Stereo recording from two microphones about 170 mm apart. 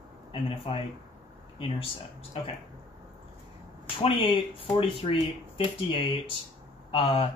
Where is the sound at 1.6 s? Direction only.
30° left (ahead or behind).